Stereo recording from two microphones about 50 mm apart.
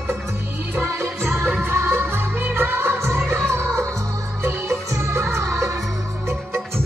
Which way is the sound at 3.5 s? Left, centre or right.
Right.